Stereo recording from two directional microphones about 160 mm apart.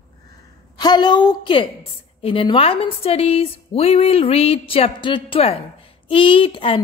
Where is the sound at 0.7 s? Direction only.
25° left (ahead or behind).